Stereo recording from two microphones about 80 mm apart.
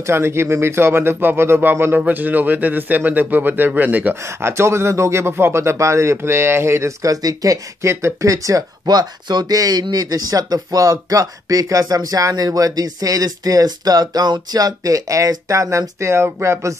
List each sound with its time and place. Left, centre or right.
0.0 s speech: right
4.4 s speech: right
7.8 s speech: right